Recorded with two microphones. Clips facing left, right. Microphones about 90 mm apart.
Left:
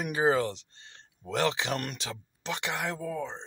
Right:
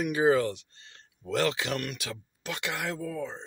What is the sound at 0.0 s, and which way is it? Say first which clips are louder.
Speech: right 2 dB; 30° left (ahead or behind).